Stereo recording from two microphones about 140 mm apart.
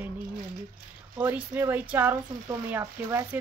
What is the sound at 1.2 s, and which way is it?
A woman's voice, 10° right (ahead or behind).